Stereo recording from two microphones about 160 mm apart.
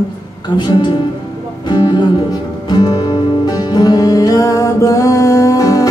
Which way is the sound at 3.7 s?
25° left (ahead or behind).